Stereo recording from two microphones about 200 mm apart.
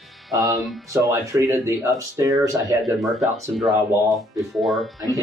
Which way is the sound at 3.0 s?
Centre (ahead or behind).